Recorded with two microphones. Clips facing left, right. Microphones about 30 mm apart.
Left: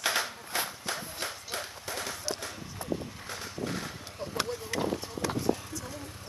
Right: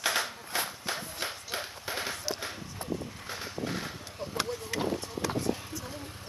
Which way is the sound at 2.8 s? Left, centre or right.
Right.